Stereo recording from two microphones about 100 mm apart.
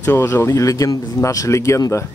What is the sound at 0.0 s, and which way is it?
Speech, 25° left (ahead or behind).